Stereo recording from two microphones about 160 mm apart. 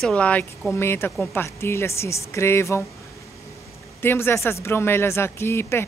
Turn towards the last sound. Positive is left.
turn(degrees=15)  # may be behind; listen again after turning